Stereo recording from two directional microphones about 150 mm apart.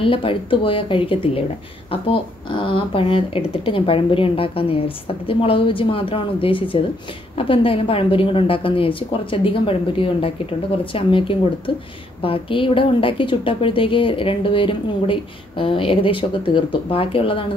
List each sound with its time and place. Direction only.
0.0 s a woman's voice: 35° left (ahead or behind)
2.6 s a woman's voice: 35° left (ahead or behind)